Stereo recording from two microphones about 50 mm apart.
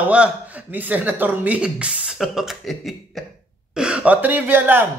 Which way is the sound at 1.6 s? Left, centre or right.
Centre.